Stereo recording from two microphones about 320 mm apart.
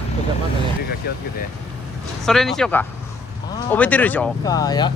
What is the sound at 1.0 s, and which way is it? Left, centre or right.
Speech, left.